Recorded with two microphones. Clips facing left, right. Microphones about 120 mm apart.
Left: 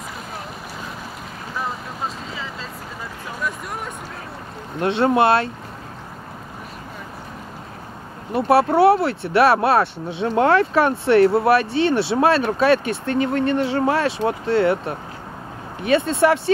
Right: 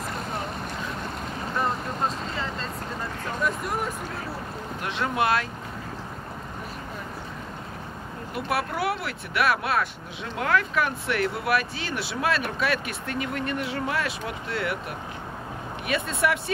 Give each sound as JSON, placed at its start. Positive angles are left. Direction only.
{"t": 1.5, "sound": "vehicle", "side_deg": 0}
{"t": 3.3, "sound": "a sound", "side_deg": 0}
{"t": 4.7, "sound": "speech", "side_deg": 30}
{"t": 8.3, "sound": "speech", "side_deg": 30}